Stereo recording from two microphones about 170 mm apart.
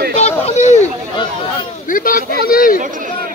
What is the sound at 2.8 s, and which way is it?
Speech, 50° right (ahead or behind).